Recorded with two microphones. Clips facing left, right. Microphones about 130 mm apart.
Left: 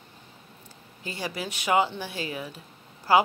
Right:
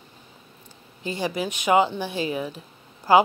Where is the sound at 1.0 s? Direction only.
20° right (ahead or behind).